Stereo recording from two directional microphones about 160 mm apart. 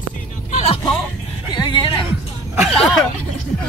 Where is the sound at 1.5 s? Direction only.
30° left (ahead or behind).